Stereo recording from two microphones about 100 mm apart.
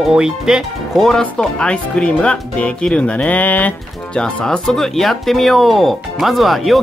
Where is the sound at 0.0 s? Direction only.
5° right (ahead or behind).